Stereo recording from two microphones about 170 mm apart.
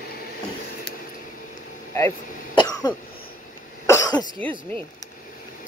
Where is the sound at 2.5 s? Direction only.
25° left (ahead or behind).